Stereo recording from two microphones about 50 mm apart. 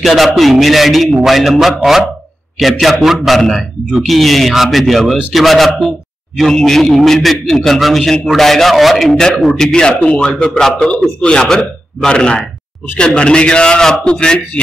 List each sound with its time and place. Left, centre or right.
0.0 s a man's voice: centre